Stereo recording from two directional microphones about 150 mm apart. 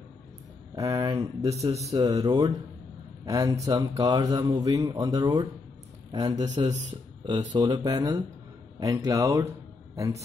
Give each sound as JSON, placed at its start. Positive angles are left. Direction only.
{"t": 0.7, "sound": "speech", "side_deg": -25}
{"t": 1.5, "sound": "speech", "side_deg": -45}
{"t": 1.8, "sound": "speech", "side_deg": -20}